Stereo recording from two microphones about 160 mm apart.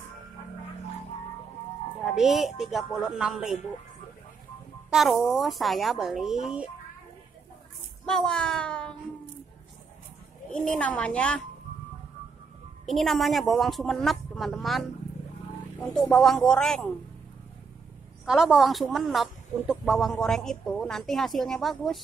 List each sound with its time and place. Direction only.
2.0 s a woman's voice: centre (ahead or behind)
4.9 s a woman's voice: centre (ahead or behind)
8.0 s speech: 5° left (ahead or behind)
10.5 s speech: 5° left (ahead or behind)
12.8 s a woman's voice: centre (ahead or behind)
15.9 s a woman's voice: 5° left (ahead or behind)
18.2 s a woman's voice: 5° right (ahead or behind)